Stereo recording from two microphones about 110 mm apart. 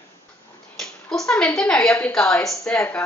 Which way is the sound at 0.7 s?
5° left (ahead or behind).